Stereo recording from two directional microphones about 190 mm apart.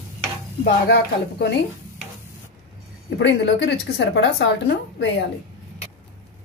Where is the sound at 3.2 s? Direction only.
65° left (ahead or behind).